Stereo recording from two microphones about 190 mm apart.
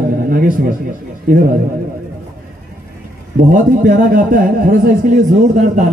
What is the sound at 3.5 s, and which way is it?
Speech, 45° right (ahead or behind).